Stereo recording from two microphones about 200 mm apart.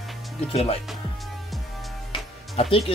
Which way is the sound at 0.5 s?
30° left (ahead or behind).